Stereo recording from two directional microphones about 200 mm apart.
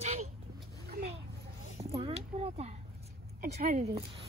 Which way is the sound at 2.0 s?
30° right (ahead or behind).